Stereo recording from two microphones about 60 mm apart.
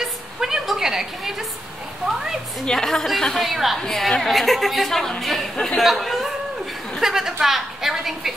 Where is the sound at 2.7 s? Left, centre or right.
Centre.